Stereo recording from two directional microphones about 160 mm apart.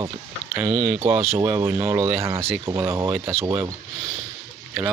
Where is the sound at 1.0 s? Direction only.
40° right (ahead or behind).